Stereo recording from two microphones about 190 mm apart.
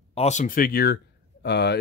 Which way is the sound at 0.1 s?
35° left (ahead or behind).